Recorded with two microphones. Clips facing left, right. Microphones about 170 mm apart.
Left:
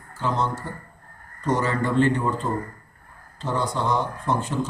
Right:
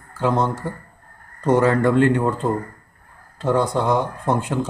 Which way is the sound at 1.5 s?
55° right (ahead or behind).